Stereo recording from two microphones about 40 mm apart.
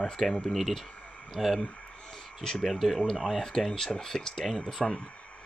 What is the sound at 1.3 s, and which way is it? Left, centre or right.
Speech, centre.